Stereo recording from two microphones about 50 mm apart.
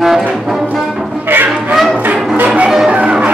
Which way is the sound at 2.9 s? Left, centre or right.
Right.